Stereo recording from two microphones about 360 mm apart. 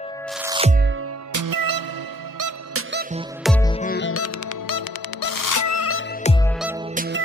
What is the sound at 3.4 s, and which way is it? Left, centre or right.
Music, centre.